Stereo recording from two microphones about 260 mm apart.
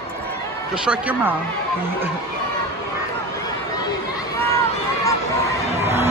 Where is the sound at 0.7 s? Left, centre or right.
Centre.